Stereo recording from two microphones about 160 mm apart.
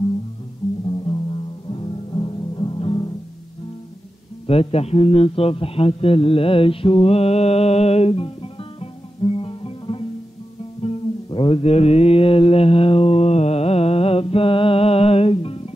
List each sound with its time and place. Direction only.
0.8 s music: 30° left (ahead or behind)
4.5 s a man's voice: 40° left (ahead or behind)
9.2 s music: 35° left (ahead or behind)